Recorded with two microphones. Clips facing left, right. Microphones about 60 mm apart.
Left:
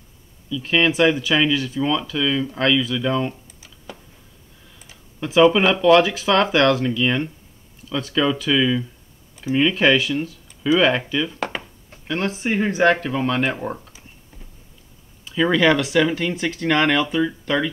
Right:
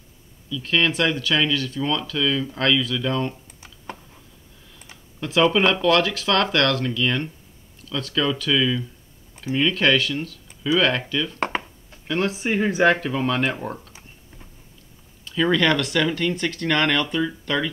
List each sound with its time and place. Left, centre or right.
0.5 s speech: centre
5.2 s speech: centre
11.3 s a sound: right
12.1 s speech: centre
15.2 s speech: centre